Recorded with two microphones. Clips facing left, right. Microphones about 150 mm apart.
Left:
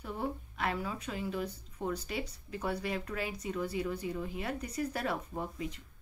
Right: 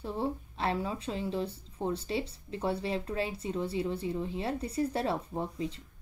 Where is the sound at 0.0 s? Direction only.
30° right (ahead or behind).